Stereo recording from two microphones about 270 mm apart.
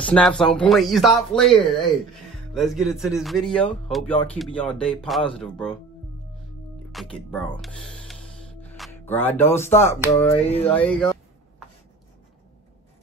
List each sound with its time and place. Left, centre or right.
0.0 s speech: centre
6.9 s music: centre
9.2 s speech: centre